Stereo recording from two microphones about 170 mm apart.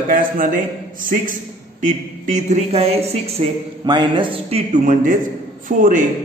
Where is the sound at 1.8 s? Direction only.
45° right (ahead or behind).